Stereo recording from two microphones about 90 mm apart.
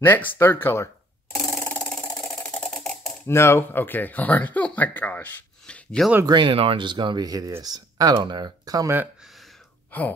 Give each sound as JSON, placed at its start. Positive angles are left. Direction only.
{"t": 0.0, "sound": "speech", "side_deg": 25}
{"t": 1.3, "sound": "a sound", "side_deg": 10}
{"t": 3.3, "sound": "speech", "side_deg": 30}
{"t": 6.2, "sound": "speech", "side_deg": -65}
{"t": 7.2, "sound": "speech", "side_deg": -40}
{"t": 9.8, "sound": "a sound", "side_deg": 20}